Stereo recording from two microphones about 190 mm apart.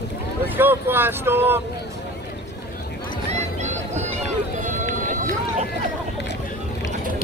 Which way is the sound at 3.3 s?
35° right (ahead or behind).